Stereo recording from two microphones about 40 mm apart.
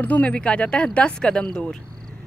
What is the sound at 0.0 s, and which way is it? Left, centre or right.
Speech, left.